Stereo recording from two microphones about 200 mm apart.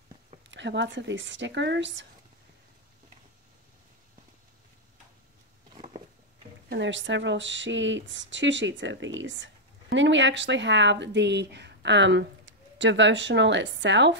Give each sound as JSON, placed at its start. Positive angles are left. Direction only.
{"t": 0.5, "sound": "speech", "side_deg": -65}
{"t": 6.7, "sound": "speech", "side_deg": -65}